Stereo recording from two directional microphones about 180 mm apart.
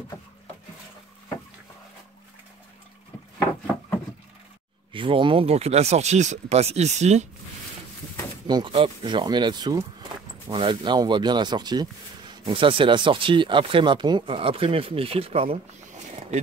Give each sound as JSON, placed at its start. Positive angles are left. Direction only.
{"t": 4.9, "sound": "speech", "side_deg": -30}
{"t": 8.5, "sound": "speech", "side_deg": -25}